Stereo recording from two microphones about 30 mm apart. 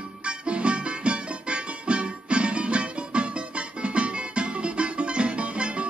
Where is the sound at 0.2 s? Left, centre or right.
Right.